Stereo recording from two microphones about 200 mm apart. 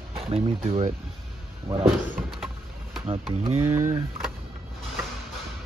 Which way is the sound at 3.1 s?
30° right (ahead or behind).